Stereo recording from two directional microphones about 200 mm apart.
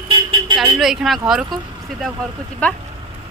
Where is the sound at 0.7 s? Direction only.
Centre (ahead or behind).